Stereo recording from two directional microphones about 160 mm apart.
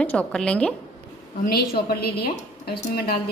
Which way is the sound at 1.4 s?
70° left (ahead or behind).